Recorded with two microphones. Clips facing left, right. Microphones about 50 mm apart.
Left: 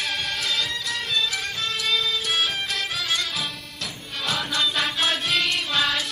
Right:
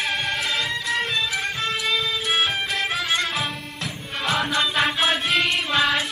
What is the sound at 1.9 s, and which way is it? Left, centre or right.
Music, centre.